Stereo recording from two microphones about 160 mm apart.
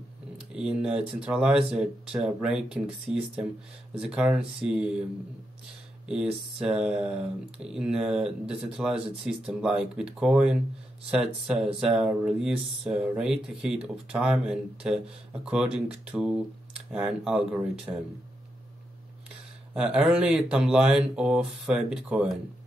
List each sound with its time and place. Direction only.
0.4 s speech: 5° right (ahead or behind)
6.0 s speech: 5° right (ahead or behind)
17.9 s speech: 15° right (ahead or behind)
19.7 s speech: 5° right (ahead or behind)